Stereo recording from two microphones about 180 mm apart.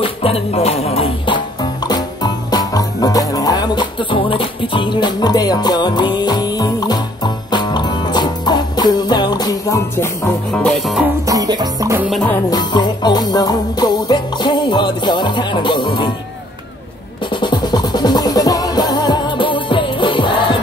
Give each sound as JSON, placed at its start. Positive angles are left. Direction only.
{"t": 0.0, "sound": "music", "side_deg": 30}
{"t": 10.7, "sound": "music", "side_deg": 0}
{"t": 11.2, "sound": "music", "side_deg": -20}
{"t": 12.1, "sound": "music", "side_deg": 5}
{"t": 12.4, "sound": "music", "side_deg": 25}
{"t": 17.3, "sound": "music", "side_deg": 25}